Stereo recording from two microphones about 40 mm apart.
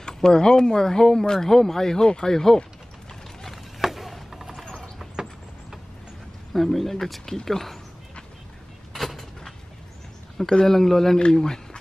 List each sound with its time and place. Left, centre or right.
0.0 s speech: centre
3.8 s a sound: centre
6.5 s speech: centre
8.9 s vehicle: centre
10.6 s speech: centre